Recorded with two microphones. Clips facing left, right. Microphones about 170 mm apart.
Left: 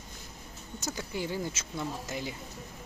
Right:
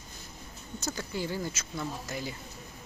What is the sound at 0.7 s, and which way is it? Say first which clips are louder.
Speech: right 1 dB; 20° left (ahead or behind).